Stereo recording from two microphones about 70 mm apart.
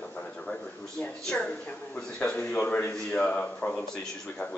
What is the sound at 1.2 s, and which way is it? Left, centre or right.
Speech, centre.